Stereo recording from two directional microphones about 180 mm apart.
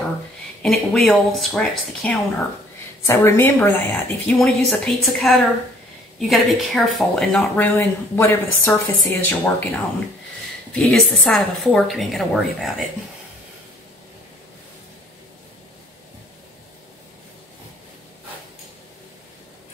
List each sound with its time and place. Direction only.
0.6 s a woman's voice: centre (ahead or behind)
3.1 s speech: 15° left (ahead or behind)
10.7 s a woman's voice: 5° left (ahead or behind)